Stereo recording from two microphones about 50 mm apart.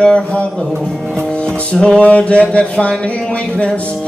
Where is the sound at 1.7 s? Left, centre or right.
Centre.